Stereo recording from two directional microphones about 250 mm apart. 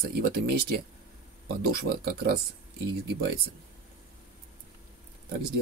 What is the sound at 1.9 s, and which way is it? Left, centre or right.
Speech, right.